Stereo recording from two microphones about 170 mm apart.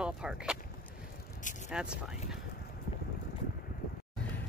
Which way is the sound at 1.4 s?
50° left (ahead or behind).